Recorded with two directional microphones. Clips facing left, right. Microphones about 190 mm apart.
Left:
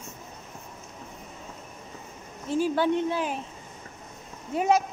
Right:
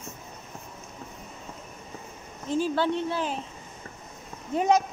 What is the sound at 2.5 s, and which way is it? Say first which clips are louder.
Speech: left 1 dB; 15° left (ahead or behind).